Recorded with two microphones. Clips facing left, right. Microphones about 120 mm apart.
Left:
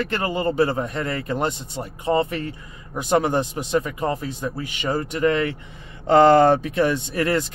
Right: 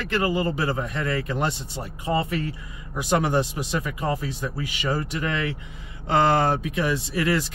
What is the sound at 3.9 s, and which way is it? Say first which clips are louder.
Speech: left 2 dB; 35° left (ahead or behind).